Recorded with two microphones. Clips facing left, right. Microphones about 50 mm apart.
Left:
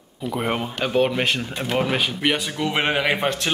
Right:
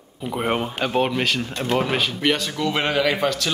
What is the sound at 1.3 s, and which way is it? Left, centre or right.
A man's voice, centre.